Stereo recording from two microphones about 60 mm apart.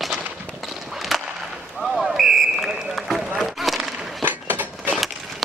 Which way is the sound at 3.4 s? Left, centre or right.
Centre.